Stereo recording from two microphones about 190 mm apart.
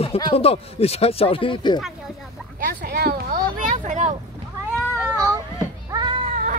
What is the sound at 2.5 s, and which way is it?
Speech, 55° right (ahead or behind).